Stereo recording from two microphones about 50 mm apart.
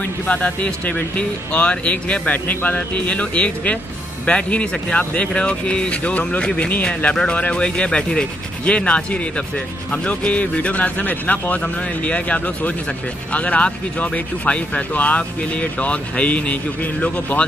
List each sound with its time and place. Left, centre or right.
0.8 s speech: left